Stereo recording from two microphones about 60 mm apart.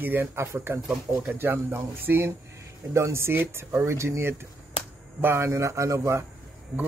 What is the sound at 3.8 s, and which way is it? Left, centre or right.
Speech, right.